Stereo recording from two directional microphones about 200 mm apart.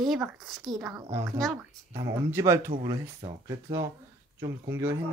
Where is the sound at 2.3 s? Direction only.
15° right (ahead or behind).